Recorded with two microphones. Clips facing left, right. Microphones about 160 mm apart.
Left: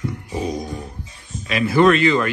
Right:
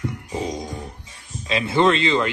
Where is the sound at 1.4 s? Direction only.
25° right (ahead or behind).